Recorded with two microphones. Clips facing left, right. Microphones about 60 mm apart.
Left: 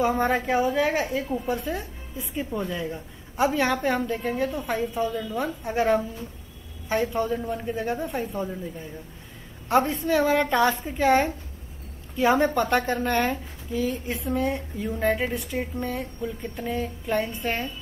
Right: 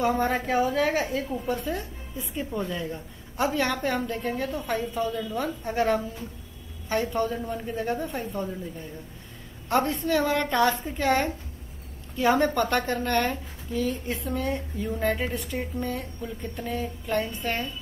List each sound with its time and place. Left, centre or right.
0.0 s a woman's voice: centre